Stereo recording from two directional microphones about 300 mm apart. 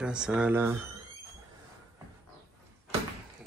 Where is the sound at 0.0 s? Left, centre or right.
Centre.